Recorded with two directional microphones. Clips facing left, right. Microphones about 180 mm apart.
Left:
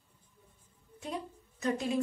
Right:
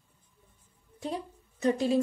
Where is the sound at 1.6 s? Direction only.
35° right (ahead or behind).